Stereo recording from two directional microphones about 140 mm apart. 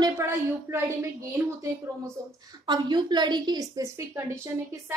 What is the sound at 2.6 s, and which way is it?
A woman's voice, 35° right (ahead or behind).